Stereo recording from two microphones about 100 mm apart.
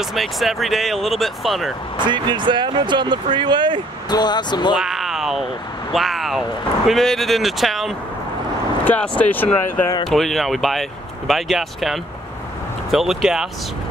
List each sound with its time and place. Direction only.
0.0 s speech: centre (ahead or behind)
2.0 s speech: 50° right (ahead or behind)
4.1 s speech: 45° left (ahead or behind)
4.7 s a sound: 5° right (ahead or behind)
5.9 s speech: centre (ahead or behind)
8.8 s speech: 15° left (ahead or behind)
10.0 s speech: centre (ahead or behind)